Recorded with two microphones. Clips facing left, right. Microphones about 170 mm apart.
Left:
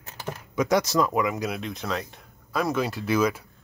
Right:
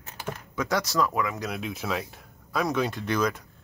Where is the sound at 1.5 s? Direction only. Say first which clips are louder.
Even; 5° right (ahead or behind).